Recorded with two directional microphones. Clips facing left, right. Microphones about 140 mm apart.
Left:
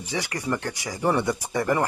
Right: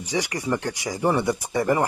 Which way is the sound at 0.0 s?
15° right (ahead or behind).